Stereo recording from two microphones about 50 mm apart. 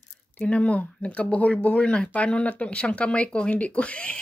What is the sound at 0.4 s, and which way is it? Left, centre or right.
Speech, left.